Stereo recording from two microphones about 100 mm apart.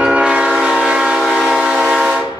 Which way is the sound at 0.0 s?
10° right (ahead or behind).